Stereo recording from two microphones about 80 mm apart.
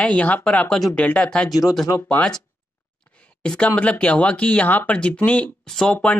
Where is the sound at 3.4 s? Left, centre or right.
Centre.